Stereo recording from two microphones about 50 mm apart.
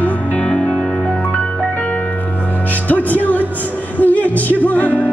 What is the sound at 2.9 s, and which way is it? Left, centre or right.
Music, left.